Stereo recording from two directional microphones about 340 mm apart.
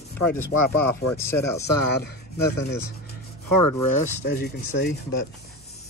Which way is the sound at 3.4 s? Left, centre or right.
Left.